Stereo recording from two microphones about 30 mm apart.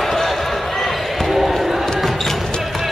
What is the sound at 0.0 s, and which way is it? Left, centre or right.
Basketball bounce, centre.